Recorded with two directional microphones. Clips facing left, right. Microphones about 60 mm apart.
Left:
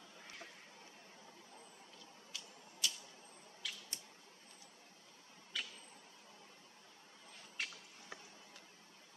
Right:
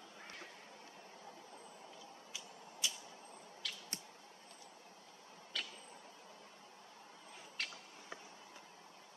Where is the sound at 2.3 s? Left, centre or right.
Centre.